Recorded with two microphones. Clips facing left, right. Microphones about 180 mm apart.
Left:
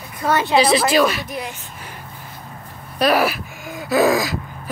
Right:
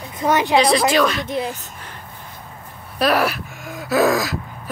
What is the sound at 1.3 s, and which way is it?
Speech, 25° right (ahead or behind).